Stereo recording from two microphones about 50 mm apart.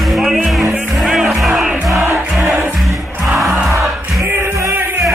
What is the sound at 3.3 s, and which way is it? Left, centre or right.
Music, centre.